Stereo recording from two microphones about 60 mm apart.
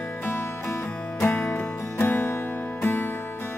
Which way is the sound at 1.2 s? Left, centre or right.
Left.